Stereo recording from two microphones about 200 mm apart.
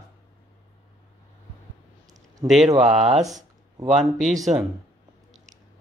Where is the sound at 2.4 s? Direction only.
30° right (ahead or behind).